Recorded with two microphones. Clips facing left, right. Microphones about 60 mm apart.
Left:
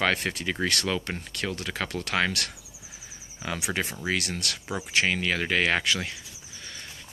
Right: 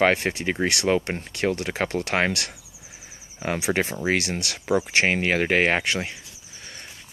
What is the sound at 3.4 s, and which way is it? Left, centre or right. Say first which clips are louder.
Speech: right 6 dB; right.